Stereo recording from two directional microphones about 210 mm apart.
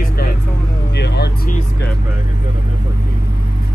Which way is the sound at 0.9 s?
50° left (ahead or behind).